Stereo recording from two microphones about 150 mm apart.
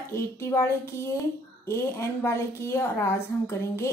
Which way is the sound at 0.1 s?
20° left (ahead or behind).